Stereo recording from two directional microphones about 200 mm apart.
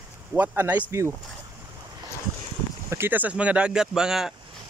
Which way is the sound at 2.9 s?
10° right (ahead or behind).